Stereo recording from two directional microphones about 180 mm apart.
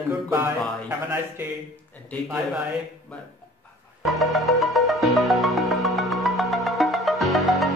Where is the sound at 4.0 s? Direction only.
Centre (ahead or behind).